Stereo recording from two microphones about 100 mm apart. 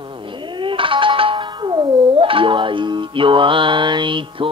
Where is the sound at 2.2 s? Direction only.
60° right (ahead or behind).